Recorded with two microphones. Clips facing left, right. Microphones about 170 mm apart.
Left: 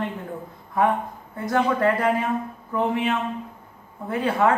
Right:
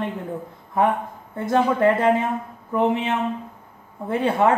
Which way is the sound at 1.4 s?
25° right (ahead or behind).